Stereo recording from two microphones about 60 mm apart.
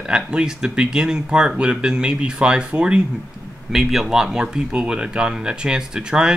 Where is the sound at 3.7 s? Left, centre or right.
Centre.